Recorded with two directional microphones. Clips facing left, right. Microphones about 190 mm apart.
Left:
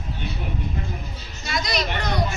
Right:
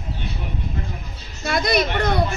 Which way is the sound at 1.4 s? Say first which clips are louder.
Right 6 dB; 55° right (ahead or behind).